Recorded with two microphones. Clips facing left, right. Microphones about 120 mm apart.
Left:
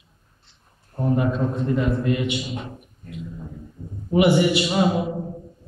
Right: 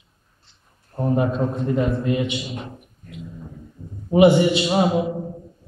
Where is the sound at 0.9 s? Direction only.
30° right (ahead or behind).